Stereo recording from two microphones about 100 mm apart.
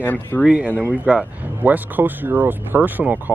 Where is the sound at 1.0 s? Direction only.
15° right (ahead or behind).